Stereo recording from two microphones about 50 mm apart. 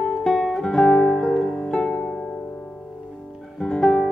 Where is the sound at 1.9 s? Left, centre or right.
Left.